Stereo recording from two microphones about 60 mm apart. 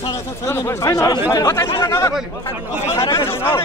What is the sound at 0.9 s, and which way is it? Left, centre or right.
Speech, left.